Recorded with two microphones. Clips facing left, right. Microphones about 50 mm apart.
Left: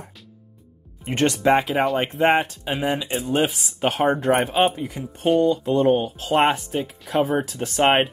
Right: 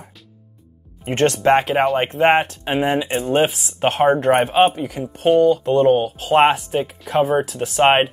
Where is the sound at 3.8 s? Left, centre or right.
Right.